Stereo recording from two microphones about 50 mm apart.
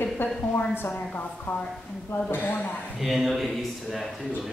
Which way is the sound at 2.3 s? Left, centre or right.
Left.